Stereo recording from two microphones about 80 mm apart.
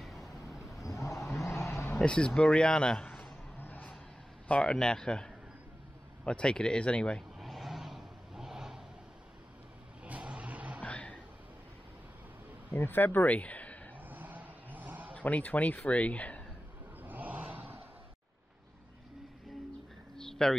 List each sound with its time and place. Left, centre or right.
0.0 s vehicle: centre
0.8 s vehicle: left
2.0 s speech: centre
3.5 s vehicle: left
4.5 s speech: centre
7.3 s vehicle: centre
10.0 s vehicle: centre
10.8 s a sound: centre
12.7 s speech: left
13.9 s a sound: right
15.1 s speech: centre
17.0 s a sound: right
20.2 s a sound: centre